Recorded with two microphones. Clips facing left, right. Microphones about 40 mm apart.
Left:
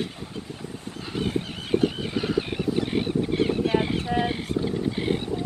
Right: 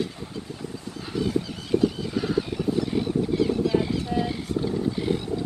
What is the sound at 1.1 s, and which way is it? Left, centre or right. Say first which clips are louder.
Fowl: right 2 dB; left.